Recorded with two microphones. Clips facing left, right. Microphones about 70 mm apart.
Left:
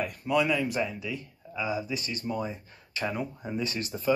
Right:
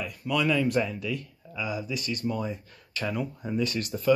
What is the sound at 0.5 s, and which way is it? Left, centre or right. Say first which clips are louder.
Speech: right 3 dB; centre.